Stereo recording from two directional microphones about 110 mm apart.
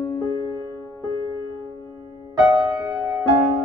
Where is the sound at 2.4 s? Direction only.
30° right (ahead or behind).